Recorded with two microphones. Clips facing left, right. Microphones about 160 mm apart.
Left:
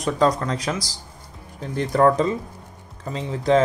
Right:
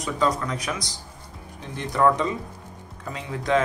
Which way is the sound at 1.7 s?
40° left (ahead or behind).